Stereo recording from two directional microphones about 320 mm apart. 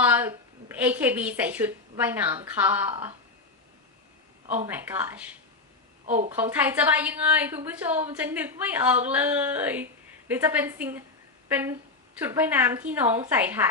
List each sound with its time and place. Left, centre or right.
0.0 s a woman's voice: centre
4.7 s a woman's voice: centre
6.0 s a woman's voice: right
6.3 s a woman's voice: centre